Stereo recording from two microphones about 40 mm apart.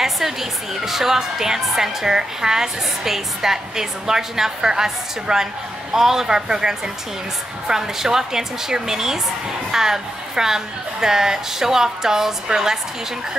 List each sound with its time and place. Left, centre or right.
0.0 s a woman's voice: centre